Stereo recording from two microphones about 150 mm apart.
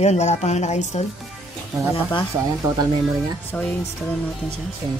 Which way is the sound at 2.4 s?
20° right (ahead or behind).